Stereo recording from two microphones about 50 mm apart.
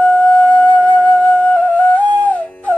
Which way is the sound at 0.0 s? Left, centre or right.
Left.